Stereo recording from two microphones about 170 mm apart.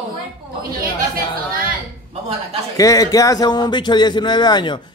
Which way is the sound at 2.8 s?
20° left (ahead or behind).